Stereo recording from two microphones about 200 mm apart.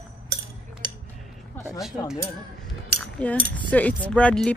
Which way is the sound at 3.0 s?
5° left (ahead or behind).